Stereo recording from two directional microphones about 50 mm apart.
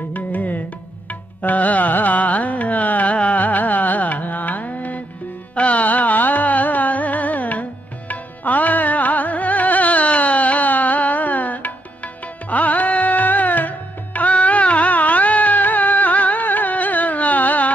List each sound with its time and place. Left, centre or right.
0.1 s music: left
1.4 s carnatic music: left
5.5 s music: left